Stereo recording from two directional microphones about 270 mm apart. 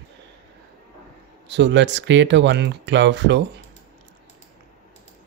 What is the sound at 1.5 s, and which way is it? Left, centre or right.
Speech, right.